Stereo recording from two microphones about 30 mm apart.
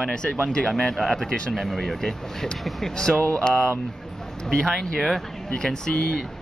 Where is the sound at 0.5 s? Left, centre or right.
Centre.